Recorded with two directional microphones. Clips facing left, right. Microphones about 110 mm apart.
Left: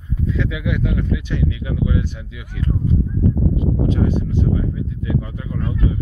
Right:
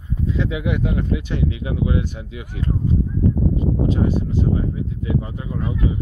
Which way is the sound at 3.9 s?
40° right (ahead or behind).